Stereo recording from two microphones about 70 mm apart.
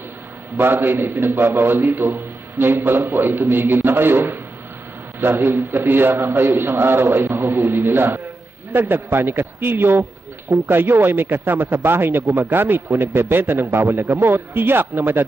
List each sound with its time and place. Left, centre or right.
0.6 s a man's voice: right